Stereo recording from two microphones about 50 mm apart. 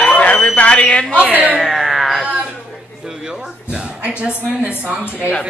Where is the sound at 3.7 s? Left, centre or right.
Right.